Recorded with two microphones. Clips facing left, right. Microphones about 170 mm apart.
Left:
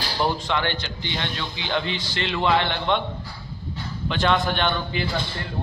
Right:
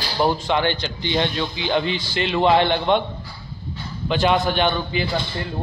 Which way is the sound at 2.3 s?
20° right (ahead or behind).